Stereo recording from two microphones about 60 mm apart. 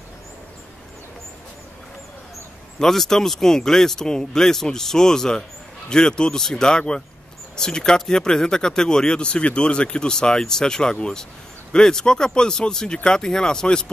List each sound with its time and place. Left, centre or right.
2.8 s speech: centre